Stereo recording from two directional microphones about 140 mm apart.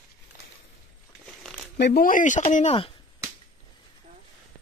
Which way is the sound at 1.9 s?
85° left.